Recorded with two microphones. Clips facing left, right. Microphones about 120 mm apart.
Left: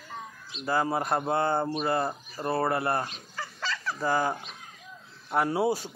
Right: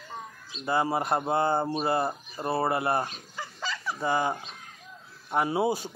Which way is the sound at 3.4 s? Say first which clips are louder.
Left 1 dB; 15° right (ahead or behind).